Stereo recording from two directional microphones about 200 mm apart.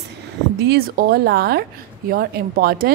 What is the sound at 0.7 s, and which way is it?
A woman's voice, 50° right (ahead or behind).